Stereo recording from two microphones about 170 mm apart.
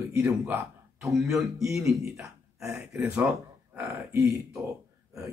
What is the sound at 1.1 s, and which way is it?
A man's voice, centre (ahead or behind).